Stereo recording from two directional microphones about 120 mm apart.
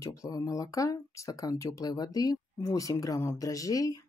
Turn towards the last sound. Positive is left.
turn(degrees=30)  # may be behind; listen again after turning